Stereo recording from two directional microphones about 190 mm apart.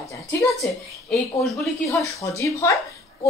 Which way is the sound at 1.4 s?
Centre (ahead or behind).